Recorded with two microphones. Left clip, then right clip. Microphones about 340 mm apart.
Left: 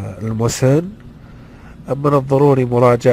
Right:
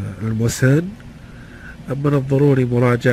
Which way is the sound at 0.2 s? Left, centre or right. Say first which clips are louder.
Left 3 dB; centre.